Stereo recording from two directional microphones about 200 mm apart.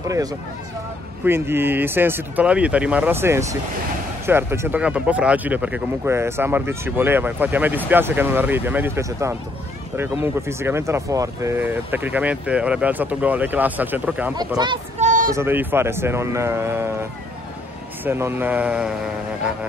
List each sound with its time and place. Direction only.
0.1 s speech: 20° right (ahead or behind)
14.6 s speech: 20° right (ahead or behind)
15.0 s a sound: 40° right (ahead or behind)
15.3 s speech: 10° right (ahead or behind)